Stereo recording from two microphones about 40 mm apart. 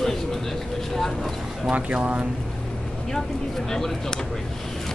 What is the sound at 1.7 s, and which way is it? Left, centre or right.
Speech, right.